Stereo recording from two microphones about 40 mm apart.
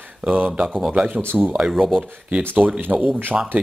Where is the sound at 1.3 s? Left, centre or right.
Right.